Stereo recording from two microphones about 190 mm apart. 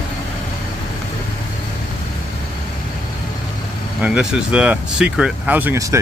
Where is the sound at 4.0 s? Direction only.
5° right (ahead or behind).